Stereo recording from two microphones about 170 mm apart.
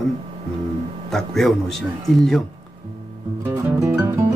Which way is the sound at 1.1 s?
Centre (ahead or behind).